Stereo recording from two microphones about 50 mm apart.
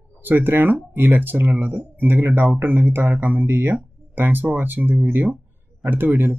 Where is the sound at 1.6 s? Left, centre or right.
Right.